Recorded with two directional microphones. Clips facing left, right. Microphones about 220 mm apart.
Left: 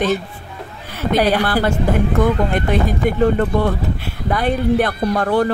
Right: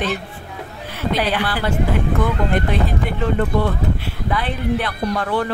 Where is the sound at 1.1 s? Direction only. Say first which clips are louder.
Left 7 dB; 45° left (ahead or behind).